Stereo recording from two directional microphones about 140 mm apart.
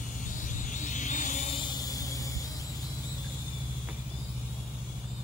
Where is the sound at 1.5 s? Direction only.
30° left (ahead or behind).